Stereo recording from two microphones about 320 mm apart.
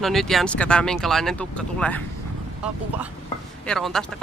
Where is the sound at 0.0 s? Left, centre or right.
Centre.